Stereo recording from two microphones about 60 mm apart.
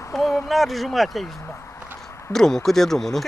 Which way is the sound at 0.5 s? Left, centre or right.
Centre.